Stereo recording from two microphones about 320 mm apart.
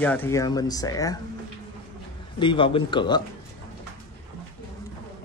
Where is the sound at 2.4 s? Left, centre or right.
Centre.